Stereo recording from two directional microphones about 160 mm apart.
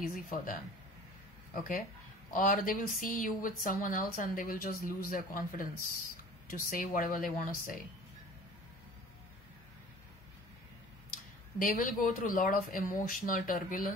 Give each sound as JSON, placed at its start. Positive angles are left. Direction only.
{"t": 0.1, "sound": "speech", "side_deg": 60}
{"t": 11.5, "sound": "speech", "side_deg": 60}